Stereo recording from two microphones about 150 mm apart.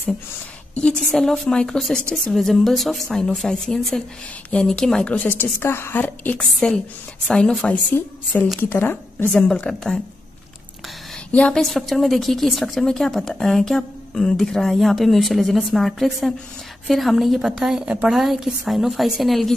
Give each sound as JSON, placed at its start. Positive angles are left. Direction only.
{"t": 0.7, "sound": "a woman's voice", "side_deg": 5}
{"t": 11.3, "sound": "a woman's voice", "side_deg": 5}